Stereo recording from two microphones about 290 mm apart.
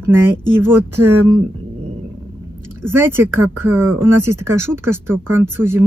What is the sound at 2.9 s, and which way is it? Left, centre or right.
Speech, centre.